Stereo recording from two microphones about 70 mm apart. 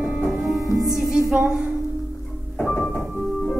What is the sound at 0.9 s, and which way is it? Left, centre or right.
Music, centre.